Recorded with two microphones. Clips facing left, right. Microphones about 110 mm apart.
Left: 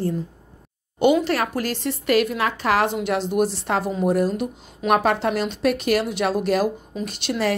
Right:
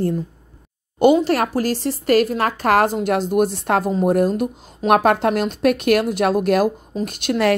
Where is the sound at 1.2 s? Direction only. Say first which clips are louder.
Right 4 dB; 40° right (ahead or behind).